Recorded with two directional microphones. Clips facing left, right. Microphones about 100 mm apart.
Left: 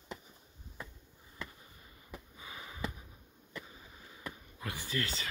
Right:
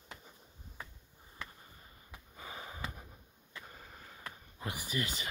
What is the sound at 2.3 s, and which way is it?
Sniff, 35° right (ahead or behind).